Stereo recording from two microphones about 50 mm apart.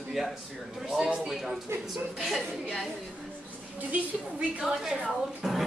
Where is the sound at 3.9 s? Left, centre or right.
Right.